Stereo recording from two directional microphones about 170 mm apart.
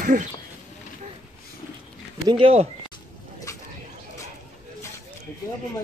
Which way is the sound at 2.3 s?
30° right (ahead or behind).